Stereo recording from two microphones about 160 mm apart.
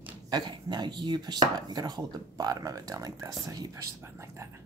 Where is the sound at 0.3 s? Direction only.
25° right (ahead or behind).